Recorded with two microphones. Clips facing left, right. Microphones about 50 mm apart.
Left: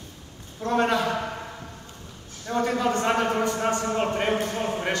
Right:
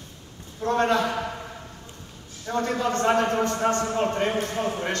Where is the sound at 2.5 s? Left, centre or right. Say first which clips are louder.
Left 1 dB; centre.